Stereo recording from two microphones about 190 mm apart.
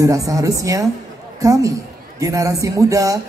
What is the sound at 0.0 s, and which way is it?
A woman's voice, 15° right (ahead or behind).